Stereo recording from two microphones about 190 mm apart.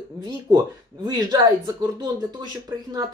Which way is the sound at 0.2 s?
20° right (ahead or behind).